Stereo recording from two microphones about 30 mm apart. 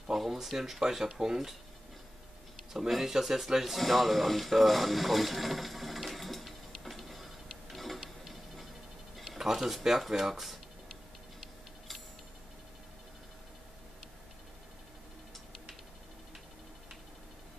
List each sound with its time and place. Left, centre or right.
0.2 s speech: centre
2.9 s speech: centre
3.8 s speech: centre
6.8 s a sound: centre
9.4 s speech: centre